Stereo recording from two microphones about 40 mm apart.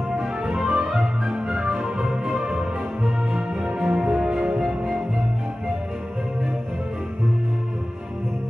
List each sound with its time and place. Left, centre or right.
0.1 s music: right